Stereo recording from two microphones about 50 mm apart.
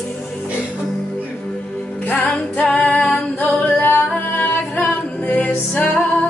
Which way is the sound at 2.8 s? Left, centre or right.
Centre.